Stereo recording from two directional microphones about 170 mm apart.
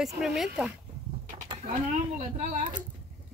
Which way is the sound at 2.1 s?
45° right (ahead or behind).